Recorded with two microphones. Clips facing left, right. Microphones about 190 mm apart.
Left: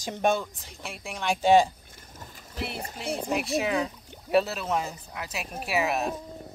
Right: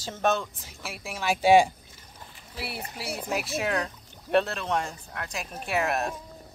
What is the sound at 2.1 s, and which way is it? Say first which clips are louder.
Boat: left 2 dB; 45° left (ahead or behind).